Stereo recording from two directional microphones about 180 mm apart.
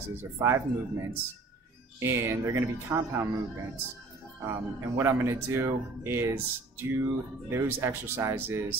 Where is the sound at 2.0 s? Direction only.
15° right (ahead or behind).